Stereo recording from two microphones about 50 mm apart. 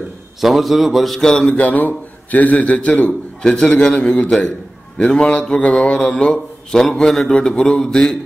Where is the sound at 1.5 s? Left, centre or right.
Left.